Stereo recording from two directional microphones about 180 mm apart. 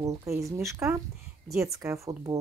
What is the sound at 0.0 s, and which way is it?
Speech, 15° right (ahead or behind).